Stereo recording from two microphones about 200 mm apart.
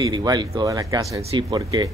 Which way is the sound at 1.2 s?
25° right (ahead or behind).